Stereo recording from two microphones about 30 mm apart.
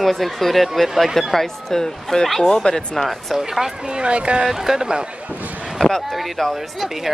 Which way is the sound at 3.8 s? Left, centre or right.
Right.